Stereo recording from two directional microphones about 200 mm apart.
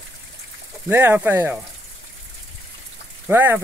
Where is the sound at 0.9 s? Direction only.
10° right (ahead or behind).